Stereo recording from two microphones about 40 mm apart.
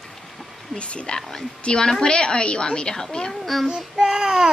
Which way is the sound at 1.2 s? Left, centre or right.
Centre.